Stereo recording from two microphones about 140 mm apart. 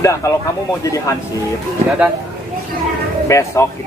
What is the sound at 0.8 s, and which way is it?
Speech, 25° left (ahead or behind).